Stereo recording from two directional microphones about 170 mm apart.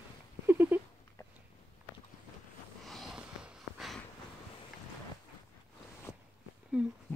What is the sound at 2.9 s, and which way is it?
Sniff, centre (ahead or behind).